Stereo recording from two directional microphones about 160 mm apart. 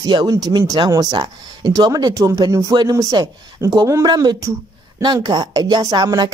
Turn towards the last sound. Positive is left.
turn(degrees=-25)  # may be behind; listen again after turning